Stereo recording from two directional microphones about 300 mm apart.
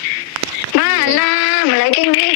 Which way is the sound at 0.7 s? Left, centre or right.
Left.